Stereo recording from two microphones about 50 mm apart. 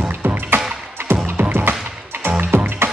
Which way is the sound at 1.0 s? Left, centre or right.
Right.